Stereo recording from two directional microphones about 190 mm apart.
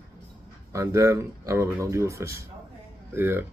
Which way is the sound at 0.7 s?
15° right (ahead or behind).